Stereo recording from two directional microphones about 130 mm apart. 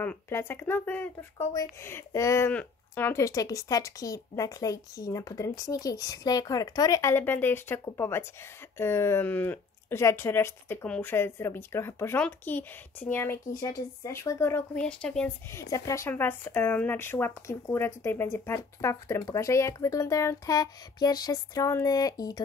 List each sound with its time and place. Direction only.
0.0 s speech: 15° left (ahead or behind)
1.5 s speech: 25° left (ahead or behind)
14.8 s speech: 5° left (ahead or behind)
15.5 s speech: 25° left (ahead or behind)